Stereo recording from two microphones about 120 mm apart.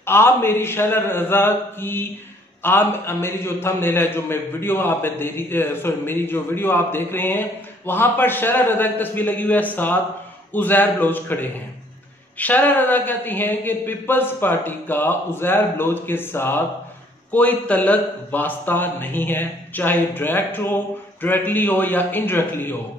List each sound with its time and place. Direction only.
0.0 s a man's voice: 20° left (ahead or behind)